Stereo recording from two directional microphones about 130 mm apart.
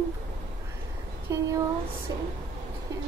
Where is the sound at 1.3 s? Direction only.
20° right (ahead or behind).